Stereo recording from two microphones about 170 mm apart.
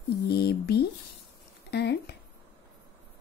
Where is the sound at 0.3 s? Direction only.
70° left (ahead or behind).